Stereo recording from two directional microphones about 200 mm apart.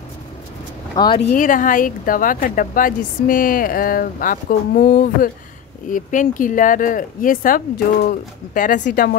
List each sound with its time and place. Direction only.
0.9 s speech: 20° left (ahead or behind)
1.2 s speech: 40° left (ahead or behind)